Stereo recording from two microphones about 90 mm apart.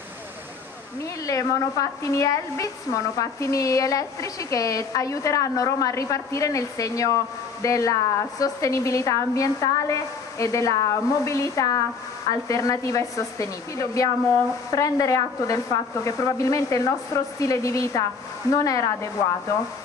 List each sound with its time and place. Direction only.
1.2 s speech: 40° left (ahead or behind)